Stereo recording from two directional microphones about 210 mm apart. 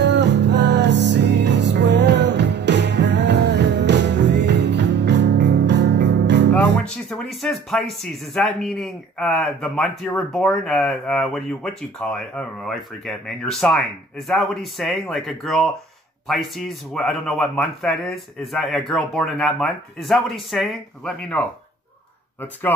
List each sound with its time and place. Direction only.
0.0 s music: 55° right (ahead or behind)
6.8 s speech: centre (ahead or behind)